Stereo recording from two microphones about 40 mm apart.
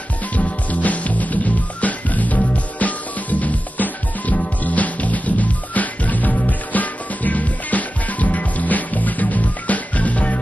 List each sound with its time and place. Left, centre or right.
0.4 s music: left